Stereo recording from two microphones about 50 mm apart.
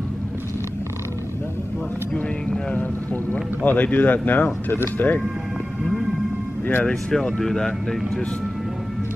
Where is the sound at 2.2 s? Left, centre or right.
Left.